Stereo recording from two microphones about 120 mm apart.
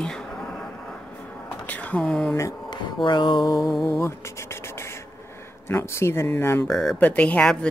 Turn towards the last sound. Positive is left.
turn(degrees=10)  # may be behind; listen again after turning